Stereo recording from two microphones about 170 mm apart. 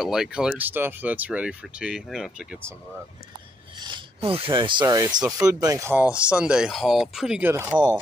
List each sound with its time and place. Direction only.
0.0 s speech: 5° right (ahead or behind)
3.8 s speech: 30° right (ahead or behind); by 7.8 s 15° right (ahead or behind)